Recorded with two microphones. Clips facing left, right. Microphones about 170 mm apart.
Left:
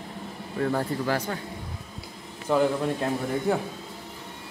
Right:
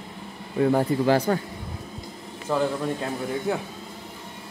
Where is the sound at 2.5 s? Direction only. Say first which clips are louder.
Left 2 dB; 5° right (ahead or behind).